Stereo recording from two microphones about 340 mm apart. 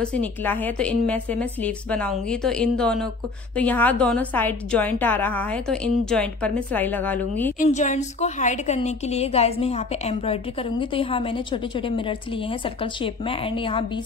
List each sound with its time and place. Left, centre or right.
0.0 s a woman's voice: centre
7.5 s a woman's voice: left